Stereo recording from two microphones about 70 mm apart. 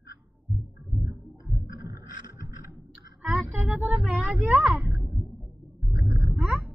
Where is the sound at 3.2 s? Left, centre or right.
Right.